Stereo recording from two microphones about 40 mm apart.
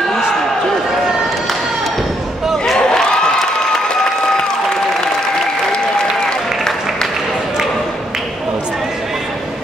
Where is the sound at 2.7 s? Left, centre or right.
Centre.